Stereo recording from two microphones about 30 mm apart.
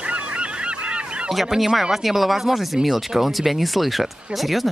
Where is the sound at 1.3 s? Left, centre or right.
Centre.